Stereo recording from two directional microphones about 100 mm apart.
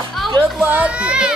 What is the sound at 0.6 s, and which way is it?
Speech, 15° right (ahead or behind).